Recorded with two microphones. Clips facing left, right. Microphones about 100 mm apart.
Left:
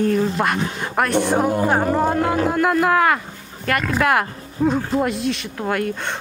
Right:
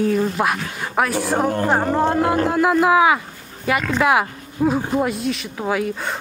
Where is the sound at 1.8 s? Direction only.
Centre (ahead or behind).